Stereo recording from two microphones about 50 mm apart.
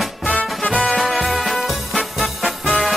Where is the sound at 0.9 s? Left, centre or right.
Centre.